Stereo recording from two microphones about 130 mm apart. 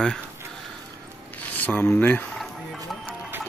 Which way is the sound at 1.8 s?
10° left (ahead or behind).